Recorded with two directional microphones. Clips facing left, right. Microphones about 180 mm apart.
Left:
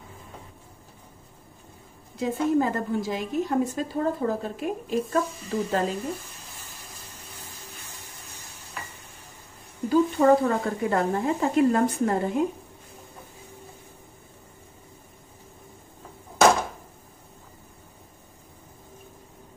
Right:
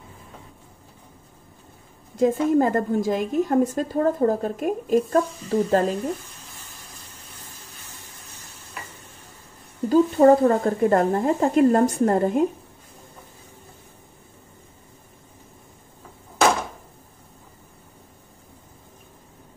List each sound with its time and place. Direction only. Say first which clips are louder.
2.1 s a woman's voice: right 5 dB; 50° right (ahead or behind)
9.8 s a woman's voice: right 4 dB; 40° right (ahead or behind)